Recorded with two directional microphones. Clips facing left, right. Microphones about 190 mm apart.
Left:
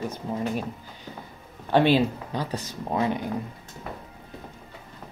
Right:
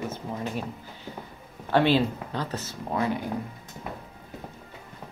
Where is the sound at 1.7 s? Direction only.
15° left (ahead or behind).